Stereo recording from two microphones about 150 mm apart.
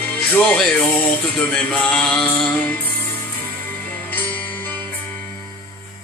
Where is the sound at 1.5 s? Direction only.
5° left (ahead or behind).